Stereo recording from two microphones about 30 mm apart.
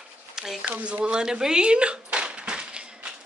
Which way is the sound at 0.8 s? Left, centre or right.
Right.